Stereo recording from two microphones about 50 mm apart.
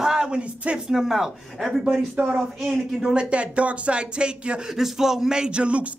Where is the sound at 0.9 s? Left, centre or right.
Centre.